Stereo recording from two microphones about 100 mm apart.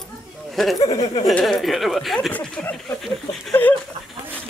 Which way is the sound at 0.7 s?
40° left (ahead or behind).